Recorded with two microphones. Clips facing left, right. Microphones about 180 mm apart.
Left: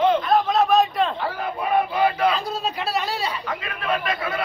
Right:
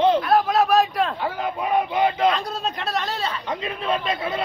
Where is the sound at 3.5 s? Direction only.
25° right (ahead or behind).